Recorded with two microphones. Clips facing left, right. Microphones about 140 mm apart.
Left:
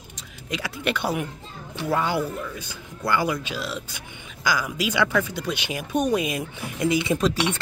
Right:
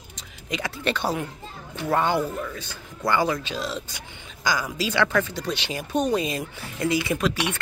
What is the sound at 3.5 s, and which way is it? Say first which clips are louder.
Speech: right 1 dB; 40° right (ahead or behind).